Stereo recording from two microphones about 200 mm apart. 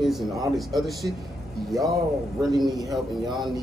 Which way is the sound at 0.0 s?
Centre (ahead or behind).